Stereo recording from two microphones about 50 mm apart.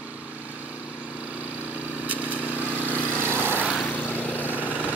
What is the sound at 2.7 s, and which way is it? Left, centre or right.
Lawn mower, left.